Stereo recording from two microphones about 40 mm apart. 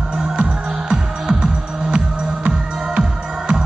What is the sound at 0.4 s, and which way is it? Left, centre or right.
Music, right.